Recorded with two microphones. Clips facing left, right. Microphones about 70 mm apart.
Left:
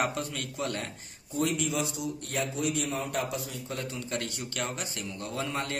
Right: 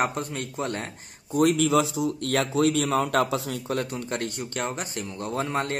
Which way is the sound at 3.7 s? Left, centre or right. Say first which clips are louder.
Right 4 dB; right.